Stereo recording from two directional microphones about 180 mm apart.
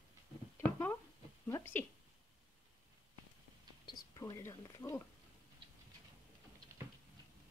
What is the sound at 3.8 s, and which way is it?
Whispering, 25° left (ahead or behind).